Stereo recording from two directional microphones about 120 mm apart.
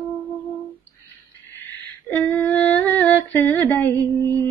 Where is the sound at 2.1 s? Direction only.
15° left (ahead or behind).